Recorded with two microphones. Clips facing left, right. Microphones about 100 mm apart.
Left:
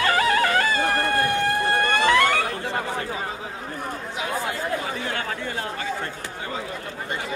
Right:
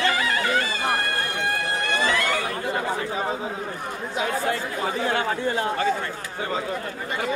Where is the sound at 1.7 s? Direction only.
55° left (ahead or behind).